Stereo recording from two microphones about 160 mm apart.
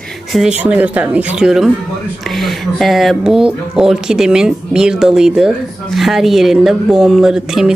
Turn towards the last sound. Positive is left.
turn(degrees=-5)  # may be behind; listen again after turning